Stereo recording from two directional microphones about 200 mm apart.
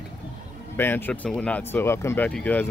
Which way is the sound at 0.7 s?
10° left (ahead or behind).